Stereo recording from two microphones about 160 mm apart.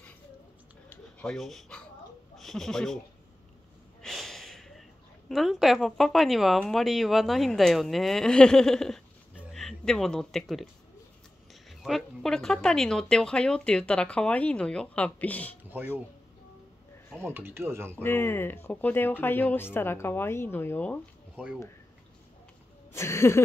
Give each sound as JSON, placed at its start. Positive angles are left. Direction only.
{"t": 0.8, "sound": "a sound", "side_deg": 5}
{"t": 2.3, "sound": "speech", "side_deg": 0}
{"t": 4.0, "sound": "snort", "side_deg": 0}
{"t": 5.3, "sound": "speech", "side_deg": 0}
{"t": 11.8, "sound": "speech", "side_deg": 0}
{"t": 17.2, "sound": "speech", "side_deg": -15}
{"t": 18.0, "sound": "speech", "side_deg": 15}
{"t": 22.9, "sound": "speech", "side_deg": 15}